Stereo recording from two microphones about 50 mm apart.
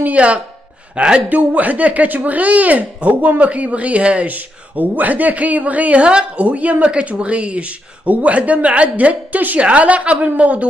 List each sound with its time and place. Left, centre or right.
0.0 s speech: right
1.3 s speech: right